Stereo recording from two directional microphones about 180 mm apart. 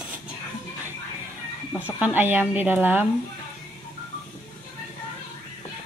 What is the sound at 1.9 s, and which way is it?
Speech, 10° right (ahead or behind).